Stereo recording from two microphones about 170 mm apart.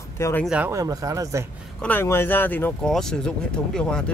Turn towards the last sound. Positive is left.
turn(degrees=5)  # may be behind; listen again after turning